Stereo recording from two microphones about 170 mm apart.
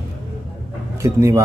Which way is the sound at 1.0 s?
15° right (ahead or behind).